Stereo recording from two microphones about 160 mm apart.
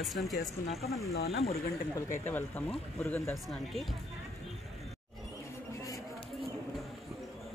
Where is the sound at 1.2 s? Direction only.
40° left (ahead or behind).